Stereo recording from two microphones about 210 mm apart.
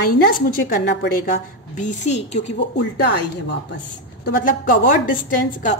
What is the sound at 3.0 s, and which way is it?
A woman's voice, 50° left (ahead or behind).